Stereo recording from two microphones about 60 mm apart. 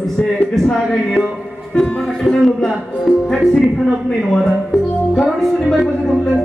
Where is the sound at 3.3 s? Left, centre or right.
Centre.